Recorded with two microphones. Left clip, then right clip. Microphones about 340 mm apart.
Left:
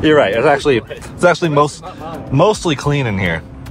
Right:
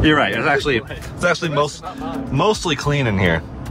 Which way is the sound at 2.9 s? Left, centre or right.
Centre.